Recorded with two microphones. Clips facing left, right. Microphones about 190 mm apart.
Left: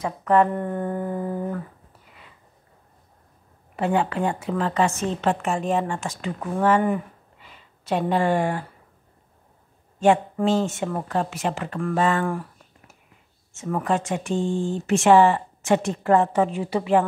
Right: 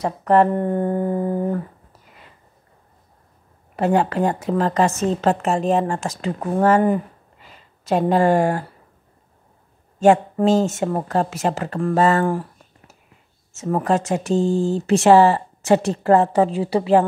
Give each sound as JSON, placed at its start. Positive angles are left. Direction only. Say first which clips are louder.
{"t": 0.0, "sound": "speech", "louder": "right 3 dB", "side_deg": -40}
{"t": 3.7, "sound": "speech", "louder": "right 4 dB", "side_deg": -40}
{"t": 9.9, "sound": "speech", "louder": "right 4 dB", "side_deg": -40}